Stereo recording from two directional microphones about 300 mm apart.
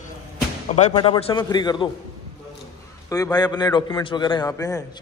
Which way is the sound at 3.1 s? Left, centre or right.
Centre.